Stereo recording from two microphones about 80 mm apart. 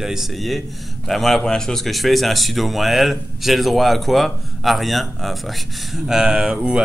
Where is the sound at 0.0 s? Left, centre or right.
Centre.